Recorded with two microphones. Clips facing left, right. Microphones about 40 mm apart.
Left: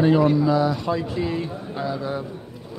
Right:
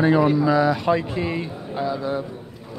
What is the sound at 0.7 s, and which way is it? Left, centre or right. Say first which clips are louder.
Speech: right 4 dB; right.